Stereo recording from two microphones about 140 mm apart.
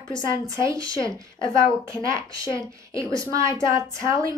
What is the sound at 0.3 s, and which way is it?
A woman's voice, 20° right (ahead or behind).